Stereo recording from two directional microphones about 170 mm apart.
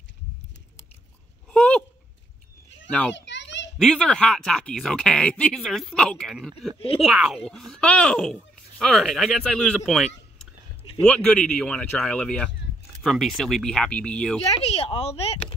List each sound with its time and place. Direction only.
1.5 s a sound: 10° left (ahead or behind)
3.2 s children playing: 90° left
3.7 s speech: 5° left (ahead or behind)
14.6 s speech: 35° left (ahead or behind)